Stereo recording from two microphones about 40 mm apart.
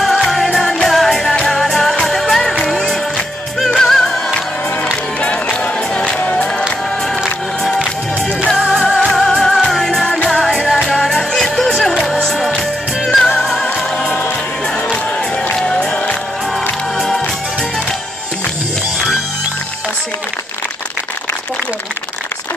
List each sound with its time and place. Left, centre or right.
0.0 s music: centre
5.2 s music: left
8.8 s music: centre
9.3 s music: centre
10.0 s music: left
10.3 s music: centre
15.5 s music: left